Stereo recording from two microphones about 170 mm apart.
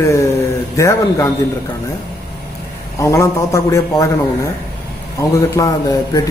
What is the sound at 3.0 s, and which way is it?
A man's voice, 15° left (ahead or behind).